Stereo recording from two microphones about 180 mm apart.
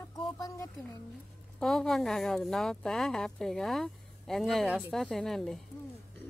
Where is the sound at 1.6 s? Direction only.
Centre (ahead or behind).